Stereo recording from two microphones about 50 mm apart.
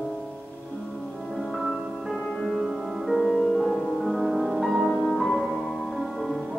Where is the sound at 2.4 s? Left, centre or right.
Centre.